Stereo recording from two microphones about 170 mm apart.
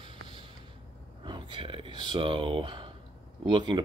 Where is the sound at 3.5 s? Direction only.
25° right (ahead or behind).